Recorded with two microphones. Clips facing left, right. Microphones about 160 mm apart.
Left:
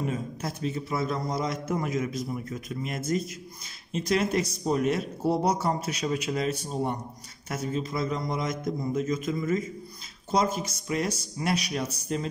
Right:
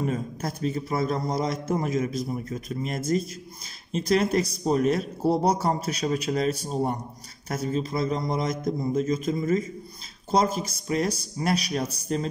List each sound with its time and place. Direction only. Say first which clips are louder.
0.1 s speech: right 2 dB; 40° right (ahead or behind)